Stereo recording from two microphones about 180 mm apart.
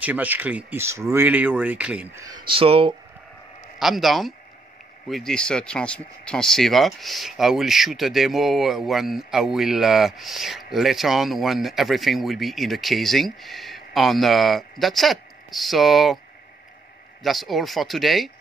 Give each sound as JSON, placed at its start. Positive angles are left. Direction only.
{"t": 0.0, "sound": "speech", "side_deg": -10}
{"t": 2.4, "sound": "speech", "side_deg": -30}
{"t": 3.8, "sound": "speech", "side_deg": 0}
{"t": 17.2, "sound": "speech", "side_deg": 0}